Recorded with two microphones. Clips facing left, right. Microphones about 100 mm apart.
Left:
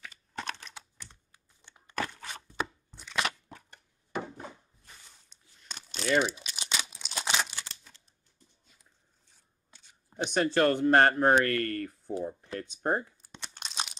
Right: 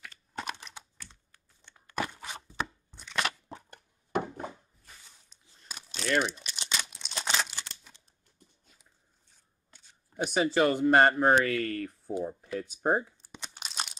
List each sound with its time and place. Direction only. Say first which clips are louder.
0.3 s computer keyboard: right 1 dB; 10° right (ahead or behind)
0.9 s computer keyboard: even; 15° left (ahead or behind)
2.0 s a sound: right 1 dB; 10° right (ahead or behind)
2.5 s chopping: left 1 dB; centre (ahead or behind)
5.3 s crumpling: even; 5° right (ahead or behind)
10.3 s speech: even; 5° right (ahead or behind)
13.2 s crumpling: right 1 dB; 5° right (ahead or behind)